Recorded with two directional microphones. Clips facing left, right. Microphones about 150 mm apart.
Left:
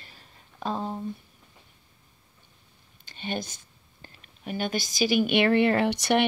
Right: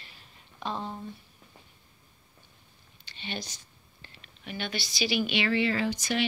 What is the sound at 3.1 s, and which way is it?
A woman's voice, 50° left (ahead or behind).